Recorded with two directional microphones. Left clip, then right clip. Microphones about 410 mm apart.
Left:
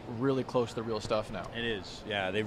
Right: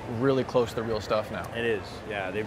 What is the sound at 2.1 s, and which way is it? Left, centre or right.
Speech, left.